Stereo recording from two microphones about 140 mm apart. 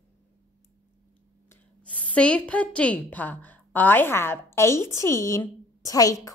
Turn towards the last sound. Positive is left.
turn(degrees=25)  # may be behind; listen again after turning